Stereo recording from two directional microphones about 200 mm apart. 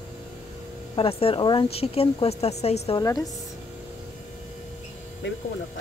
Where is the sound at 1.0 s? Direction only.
30° left (ahead or behind).